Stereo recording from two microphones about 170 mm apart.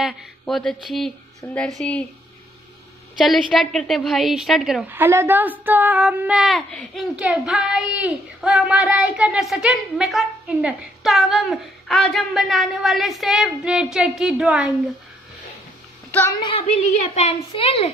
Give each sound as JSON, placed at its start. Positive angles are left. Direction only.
{"t": 0.0, "sound": "speech", "side_deg": 0}
{"t": 3.3, "sound": "speech", "side_deg": 0}
{"t": 4.8, "sound": "speech", "side_deg": -10}
{"t": 16.1, "sound": "a woman's voice", "side_deg": 10}
{"t": 16.3, "sound": "a woman's voice", "side_deg": 30}